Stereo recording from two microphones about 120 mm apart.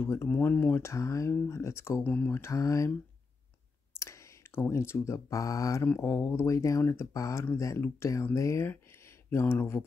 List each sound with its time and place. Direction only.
0.0 s speech: 20° left (ahead or behind)
4.0 s speech: 25° left (ahead or behind)